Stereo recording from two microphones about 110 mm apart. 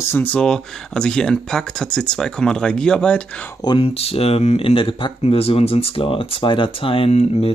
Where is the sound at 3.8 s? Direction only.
65° left (ahead or behind).